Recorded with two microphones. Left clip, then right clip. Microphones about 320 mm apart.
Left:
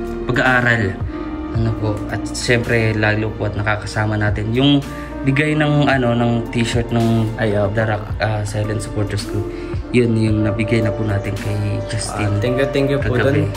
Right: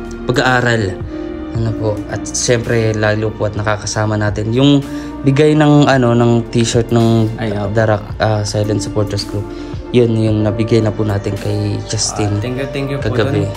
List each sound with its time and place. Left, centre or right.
0.3 s speech: centre
2.3 s speech: centre
9.9 s speech: right
10.4 s speech: centre